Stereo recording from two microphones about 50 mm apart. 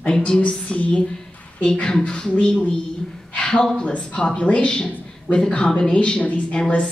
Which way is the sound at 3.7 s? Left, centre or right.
Left.